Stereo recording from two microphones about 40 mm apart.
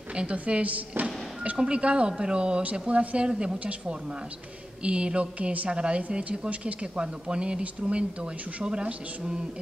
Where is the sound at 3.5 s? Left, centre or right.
Right.